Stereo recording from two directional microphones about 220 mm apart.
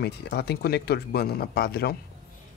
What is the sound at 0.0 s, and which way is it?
Speech, 45° left (ahead or behind).